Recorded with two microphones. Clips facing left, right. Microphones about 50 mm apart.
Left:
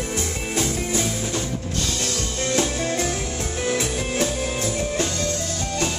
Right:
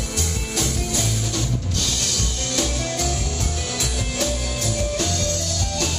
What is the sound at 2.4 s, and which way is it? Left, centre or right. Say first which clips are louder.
Music: left 3 dB; left.